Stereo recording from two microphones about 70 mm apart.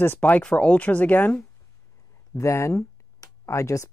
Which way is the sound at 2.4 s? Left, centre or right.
Left.